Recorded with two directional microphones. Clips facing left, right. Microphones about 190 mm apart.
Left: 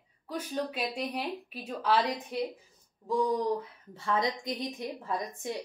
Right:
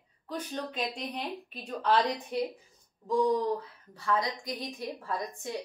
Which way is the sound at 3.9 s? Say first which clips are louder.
Left 1 dB; 25° left (ahead or behind).